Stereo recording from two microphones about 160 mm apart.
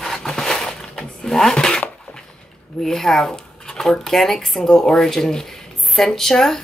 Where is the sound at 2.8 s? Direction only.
5° left (ahead or behind).